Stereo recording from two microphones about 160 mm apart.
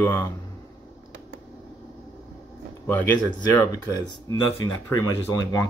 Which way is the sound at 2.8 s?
15° left (ahead or behind).